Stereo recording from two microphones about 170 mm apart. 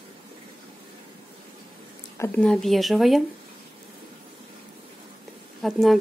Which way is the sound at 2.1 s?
15° left (ahead or behind).